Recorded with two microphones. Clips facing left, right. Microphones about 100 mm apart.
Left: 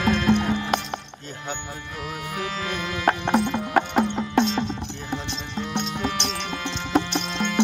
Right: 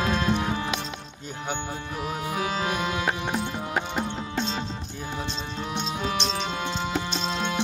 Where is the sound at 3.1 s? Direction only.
65° left (ahead or behind).